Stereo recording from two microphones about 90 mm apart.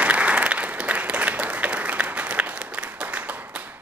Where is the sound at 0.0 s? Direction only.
15° right (ahead or behind).